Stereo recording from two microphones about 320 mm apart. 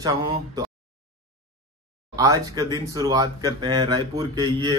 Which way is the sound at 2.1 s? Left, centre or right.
Centre.